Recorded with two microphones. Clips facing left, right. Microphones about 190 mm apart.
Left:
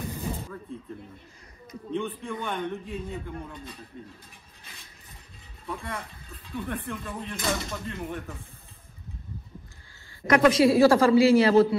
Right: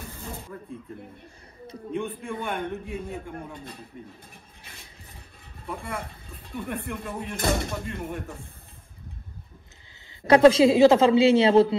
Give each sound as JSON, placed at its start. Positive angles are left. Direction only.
{"t": 0.3, "sound": "a sound", "side_deg": 10}
{"t": 1.9, "sound": "a man's voice", "side_deg": -15}
{"t": 3.9, "sound": "a man's voice", "side_deg": -15}
{"t": 6.5, "sound": "a man's voice", "side_deg": -15}
{"t": 7.3, "sound": "speech", "side_deg": -55}
{"t": 10.2, "sound": "a man's voice", "side_deg": -30}